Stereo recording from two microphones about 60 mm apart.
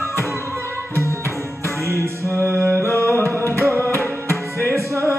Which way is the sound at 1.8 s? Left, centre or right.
Right.